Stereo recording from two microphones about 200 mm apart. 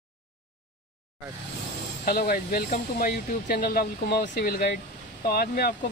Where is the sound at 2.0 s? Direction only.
50° left (ahead or behind).